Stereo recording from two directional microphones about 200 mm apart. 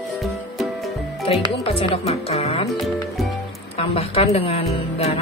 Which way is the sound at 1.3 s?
25° left (ahead or behind).